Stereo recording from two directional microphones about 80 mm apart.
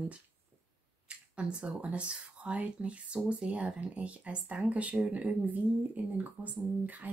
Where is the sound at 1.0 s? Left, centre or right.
Centre.